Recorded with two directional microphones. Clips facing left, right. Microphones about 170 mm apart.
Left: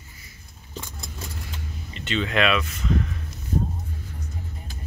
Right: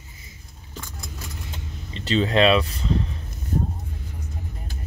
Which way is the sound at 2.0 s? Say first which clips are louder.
Right 4 dB; 35° right (ahead or behind).